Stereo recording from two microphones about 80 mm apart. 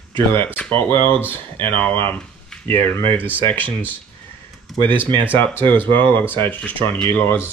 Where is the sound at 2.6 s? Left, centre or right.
Left.